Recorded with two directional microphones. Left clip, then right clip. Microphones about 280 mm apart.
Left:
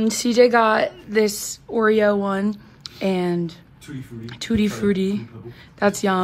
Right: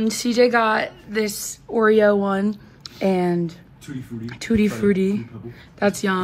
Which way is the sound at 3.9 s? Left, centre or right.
Right.